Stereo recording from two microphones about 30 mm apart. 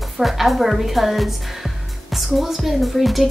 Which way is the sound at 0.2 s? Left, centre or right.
Centre.